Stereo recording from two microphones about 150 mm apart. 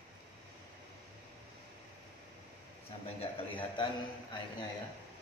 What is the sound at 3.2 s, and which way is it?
A man's voice, 35° left (ahead or behind).